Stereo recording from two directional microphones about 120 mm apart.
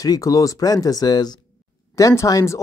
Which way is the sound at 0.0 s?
30° left (ahead or behind).